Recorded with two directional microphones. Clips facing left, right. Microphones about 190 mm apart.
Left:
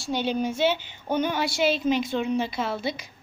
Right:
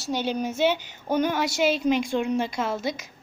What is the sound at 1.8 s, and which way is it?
Speech, 5° left (ahead or behind).